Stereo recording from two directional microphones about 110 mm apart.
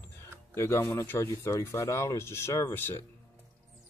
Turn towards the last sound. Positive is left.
turn(degrees=20)  # may be behind; listen again after turning